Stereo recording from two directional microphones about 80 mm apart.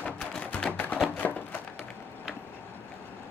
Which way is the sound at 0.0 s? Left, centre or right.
Centre.